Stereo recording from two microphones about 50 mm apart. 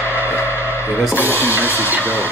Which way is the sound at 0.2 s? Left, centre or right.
Left.